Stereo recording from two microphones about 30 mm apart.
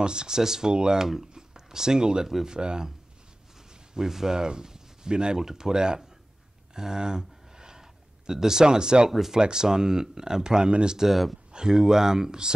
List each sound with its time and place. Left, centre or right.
0.0 s speech: right
0.4 s speech: centre
0.7 s speech: right
1.3 s a sound: centre
2.4 s speech: right
3.9 s speech: centre
6.7 s a sound: right
8.3 s speech: centre
10.7 s speech: right
11.0 s speech: centre
11.5 s speech: right